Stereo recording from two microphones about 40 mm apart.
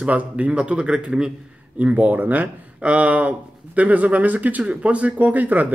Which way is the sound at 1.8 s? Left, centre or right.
Right.